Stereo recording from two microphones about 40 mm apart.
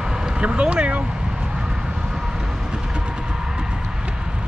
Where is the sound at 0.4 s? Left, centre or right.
Right.